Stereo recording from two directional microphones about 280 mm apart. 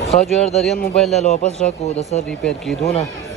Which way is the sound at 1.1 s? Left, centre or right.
Left.